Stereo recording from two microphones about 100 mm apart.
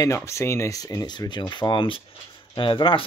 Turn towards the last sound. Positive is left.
turn(degrees=55)  # may be behind; listen again after turning